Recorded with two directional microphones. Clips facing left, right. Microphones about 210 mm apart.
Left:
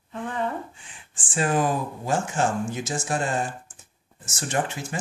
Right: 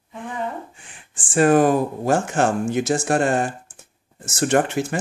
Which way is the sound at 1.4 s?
60° right (ahead or behind).